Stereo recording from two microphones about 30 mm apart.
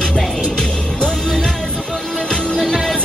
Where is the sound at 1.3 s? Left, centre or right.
Centre.